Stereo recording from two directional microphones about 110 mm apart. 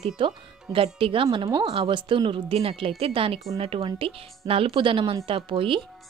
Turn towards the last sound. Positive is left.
turn(degrees=-55)  # may be behind; listen again after turning